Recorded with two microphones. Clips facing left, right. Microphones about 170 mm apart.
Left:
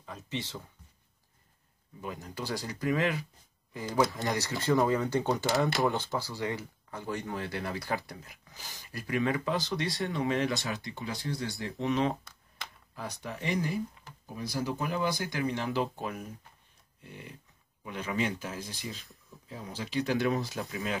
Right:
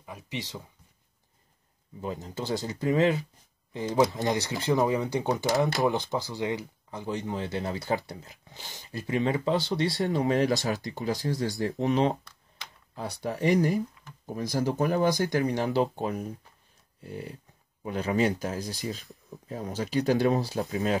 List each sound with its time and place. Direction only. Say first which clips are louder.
0.0 s speech: right 1 dB; 15° right (ahead or behind)
2.0 s speech: right 5 dB; 25° right (ahead or behind)